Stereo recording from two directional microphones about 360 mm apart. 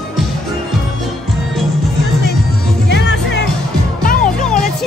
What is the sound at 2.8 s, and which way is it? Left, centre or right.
Music, left.